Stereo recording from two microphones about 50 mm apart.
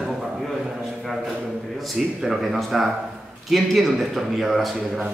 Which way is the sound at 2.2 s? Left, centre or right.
Centre.